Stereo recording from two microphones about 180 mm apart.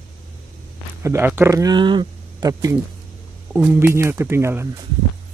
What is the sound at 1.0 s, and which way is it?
Speech, 15° right (ahead or behind).